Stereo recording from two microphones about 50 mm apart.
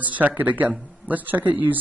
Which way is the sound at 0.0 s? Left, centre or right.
Right.